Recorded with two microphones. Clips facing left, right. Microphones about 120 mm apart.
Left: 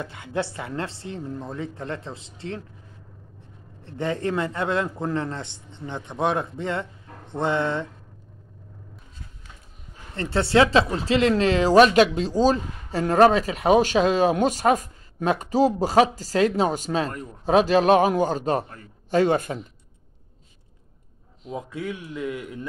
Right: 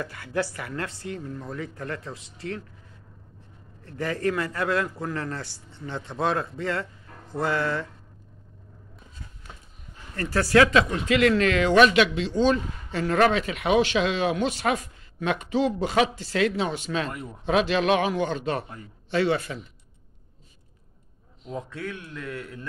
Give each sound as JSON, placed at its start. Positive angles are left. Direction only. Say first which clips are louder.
{"t": 0.0, "sound": "a man's voice", "louder": "even", "side_deg": 20}
{"t": 3.8, "sound": "a man's voice", "louder": "left 1 dB", "side_deg": 25}
{"t": 10.1, "sound": "speech", "louder": "left 1 dB", "side_deg": 25}
{"t": 21.5, "sound": "a man's voice", "louder": "left 3 dB", "side_deg": 10}